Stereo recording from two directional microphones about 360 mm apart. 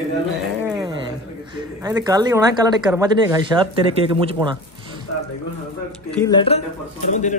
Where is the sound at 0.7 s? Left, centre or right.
Centre.